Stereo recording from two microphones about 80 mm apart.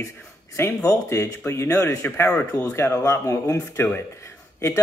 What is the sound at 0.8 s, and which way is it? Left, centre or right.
Speech, left.